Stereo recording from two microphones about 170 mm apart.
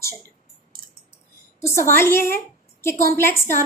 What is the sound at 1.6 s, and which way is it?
A woman's voice, 15° left (ahead or behind).